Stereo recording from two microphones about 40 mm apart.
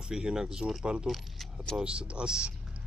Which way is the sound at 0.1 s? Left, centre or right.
Centre.